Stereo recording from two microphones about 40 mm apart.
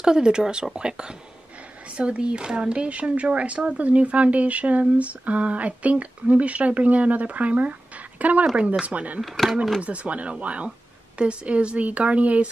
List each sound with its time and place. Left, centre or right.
0.0 s speech: centre; by 9.2 s right
9.2 s speech: centre
9.8 s speech: right